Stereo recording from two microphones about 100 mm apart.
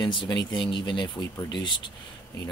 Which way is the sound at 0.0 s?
55° left (ahead or behind).